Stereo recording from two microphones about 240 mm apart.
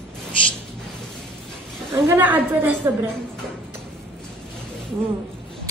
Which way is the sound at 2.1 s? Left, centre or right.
Centre.